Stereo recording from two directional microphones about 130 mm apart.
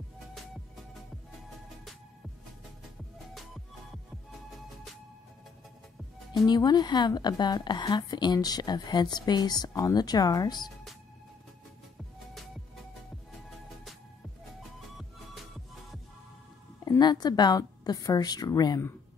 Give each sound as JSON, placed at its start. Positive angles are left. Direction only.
{"t": 6.4, "sound": "a woman's voice", "side_deg": 35}
{"t": 16.8, "sound": "a woman's voice", "side_deg": 30}